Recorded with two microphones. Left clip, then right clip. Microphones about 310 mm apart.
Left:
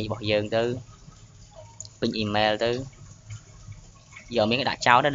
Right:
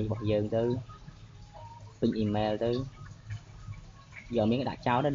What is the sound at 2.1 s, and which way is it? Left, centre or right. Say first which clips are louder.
Speech: left 10 dB; left.